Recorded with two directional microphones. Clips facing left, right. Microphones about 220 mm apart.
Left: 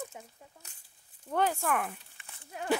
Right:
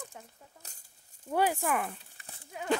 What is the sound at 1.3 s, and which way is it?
Speech, 10° right (ahead or behind).